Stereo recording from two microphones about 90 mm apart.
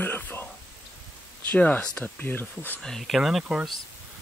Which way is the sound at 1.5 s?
20° left (ahead or behind).